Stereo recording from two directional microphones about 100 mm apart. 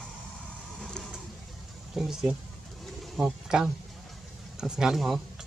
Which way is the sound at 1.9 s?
5° right (ahead or behind).